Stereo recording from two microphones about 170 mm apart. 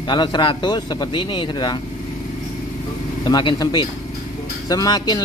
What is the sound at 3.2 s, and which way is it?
Speech, 25° left (ahead or behind).